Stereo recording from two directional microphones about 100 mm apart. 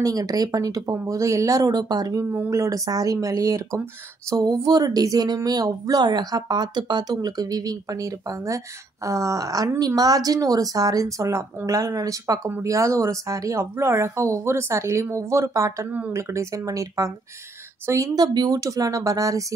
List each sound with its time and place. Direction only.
0.0 s speech: 35° right (ahead or behind)